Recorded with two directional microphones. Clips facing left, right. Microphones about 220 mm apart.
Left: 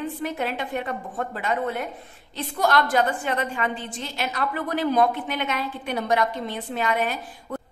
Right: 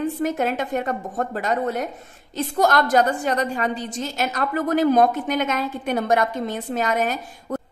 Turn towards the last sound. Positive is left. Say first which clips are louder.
# right 4 dB
turn(degrees=-45)  # may be behind; listen again after turning